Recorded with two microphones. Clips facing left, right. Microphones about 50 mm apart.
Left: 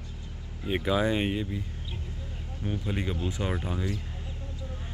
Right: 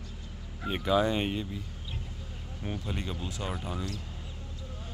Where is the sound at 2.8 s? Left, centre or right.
Centre.